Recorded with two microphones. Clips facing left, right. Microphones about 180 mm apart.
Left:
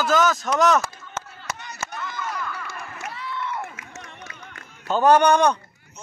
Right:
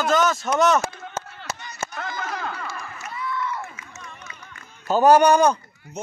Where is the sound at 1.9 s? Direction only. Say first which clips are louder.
Even; 70° right (ahead or behind).